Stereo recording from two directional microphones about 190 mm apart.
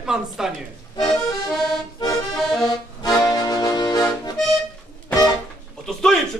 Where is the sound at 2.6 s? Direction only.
20° left (ahead or behind).